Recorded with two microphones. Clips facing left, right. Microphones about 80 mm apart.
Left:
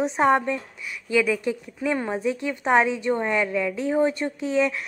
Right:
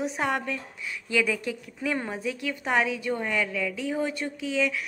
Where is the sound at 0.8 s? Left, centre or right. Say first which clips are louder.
Left 4 dB; centre.